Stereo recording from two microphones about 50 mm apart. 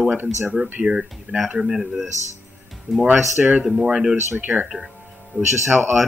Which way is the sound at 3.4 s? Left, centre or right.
Centre.